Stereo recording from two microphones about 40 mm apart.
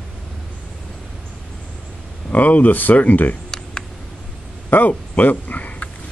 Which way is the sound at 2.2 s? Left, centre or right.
Left.